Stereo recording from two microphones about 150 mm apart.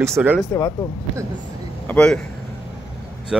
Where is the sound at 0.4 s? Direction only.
20° left (ahead or behind).